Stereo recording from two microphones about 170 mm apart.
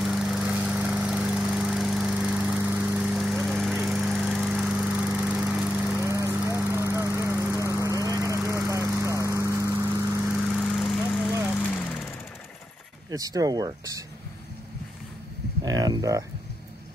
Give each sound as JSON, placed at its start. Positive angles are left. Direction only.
{"t": 0.0, "sound": "lawn mower", "side_deg": 0}
{"t": 6.5, "sound": "vehicle", "side_deg": -15}
{"t": 8.0, "sound": "a sound", "side_deg": -20}
{"t": 8.5, "sound": "vehicle", "side_deg": -15}
{"t": 10.3, "sound": "lawn mower", "side_deg": 0}
{"t": 13.1, "sound": "speech", "side_deg": -20}
{"t": 15.6, "sound": "speech", "side_deg": -20}